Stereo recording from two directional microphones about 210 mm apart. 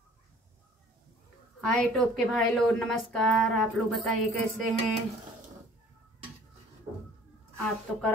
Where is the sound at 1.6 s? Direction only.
5° left (ahead or behind).